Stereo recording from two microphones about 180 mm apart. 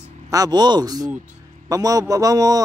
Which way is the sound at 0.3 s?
20° right (ahead or behind).